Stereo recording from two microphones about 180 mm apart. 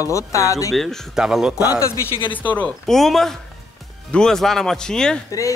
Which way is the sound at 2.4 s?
10° left (ahead or behind).